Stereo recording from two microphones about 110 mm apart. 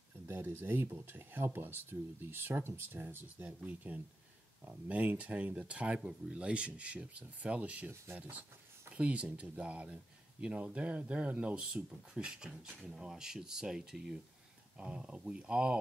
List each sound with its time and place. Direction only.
0.3 s speech: 20° right (ahead or behind)